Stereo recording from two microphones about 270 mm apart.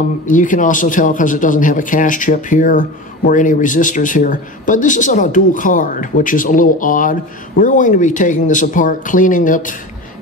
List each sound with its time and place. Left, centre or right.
0.3 s speech: left